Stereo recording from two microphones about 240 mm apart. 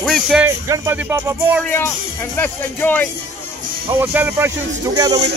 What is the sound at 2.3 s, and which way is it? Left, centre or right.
Speech, centre.